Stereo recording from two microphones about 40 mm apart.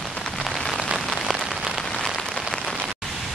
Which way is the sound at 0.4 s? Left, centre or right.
Centre.